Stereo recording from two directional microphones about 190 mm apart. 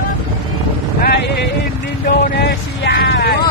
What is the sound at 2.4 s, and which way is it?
Vehicle, 60° left (ahead or behind).